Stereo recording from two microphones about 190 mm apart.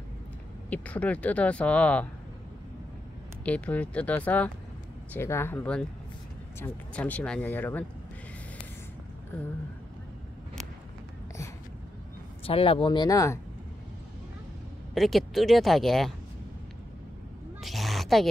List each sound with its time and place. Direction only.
0.7 s speech: 10° left (ahead or behind)
3.4 s speech: 5° left (ahead or behind)
12.4 s speech: 30° left (ahead or behind)
15.0 s speech: centre (ahead or behind)
17.6 s a sound: centre (ahead or behind)